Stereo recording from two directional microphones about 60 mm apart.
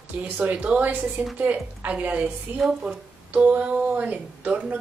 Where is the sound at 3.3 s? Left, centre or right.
Right.